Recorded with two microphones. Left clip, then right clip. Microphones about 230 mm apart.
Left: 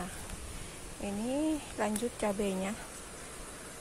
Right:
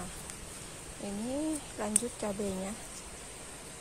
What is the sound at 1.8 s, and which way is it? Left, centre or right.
Speech, centre.